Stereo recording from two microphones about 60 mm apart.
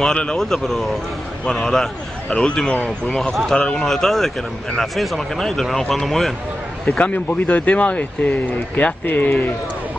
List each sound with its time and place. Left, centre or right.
0.0 s a man's voice: centre
7.2 s speech: left